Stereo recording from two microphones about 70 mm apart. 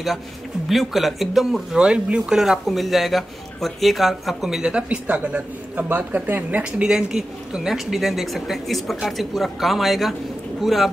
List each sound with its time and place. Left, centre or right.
0.7 s speech: centre
4.8 s speech: right
6.6 s speech: centre